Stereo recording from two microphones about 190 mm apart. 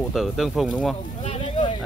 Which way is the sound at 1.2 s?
30° left (ahead or behind).